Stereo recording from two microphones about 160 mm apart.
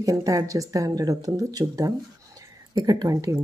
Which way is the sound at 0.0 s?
20° right (ahead or behind).